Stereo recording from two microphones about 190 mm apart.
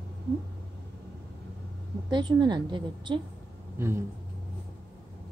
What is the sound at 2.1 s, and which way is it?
A woman's voice, 25° right (ahead or behind).